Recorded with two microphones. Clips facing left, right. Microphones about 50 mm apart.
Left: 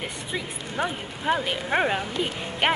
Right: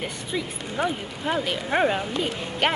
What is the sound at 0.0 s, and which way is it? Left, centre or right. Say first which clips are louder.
Speech: right 2 dB; centre.